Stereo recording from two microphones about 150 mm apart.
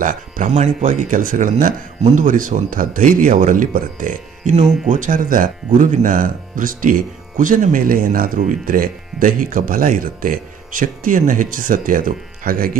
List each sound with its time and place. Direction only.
0.0 s speech: 60° right (ahead or behind)